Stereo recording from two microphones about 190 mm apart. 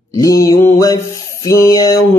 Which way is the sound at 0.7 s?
15° left (ahead or behind).